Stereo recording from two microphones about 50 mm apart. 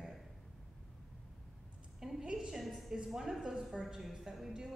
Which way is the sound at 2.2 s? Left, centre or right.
Centre.